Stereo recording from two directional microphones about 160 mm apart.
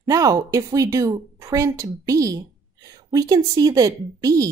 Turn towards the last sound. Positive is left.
turn(degrees=-20)  # may be behind; listen again after turning